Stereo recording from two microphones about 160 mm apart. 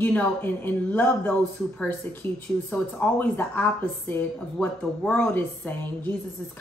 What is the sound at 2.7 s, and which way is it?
A woman's voice, 10° left (ahead or behind).